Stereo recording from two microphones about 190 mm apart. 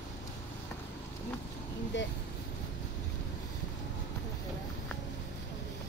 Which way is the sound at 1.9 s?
75° left (ahead or behind).